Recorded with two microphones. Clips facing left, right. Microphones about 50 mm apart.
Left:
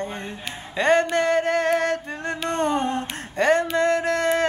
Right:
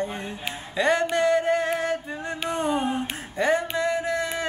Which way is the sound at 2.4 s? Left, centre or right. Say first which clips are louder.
Left 2 dB; centre.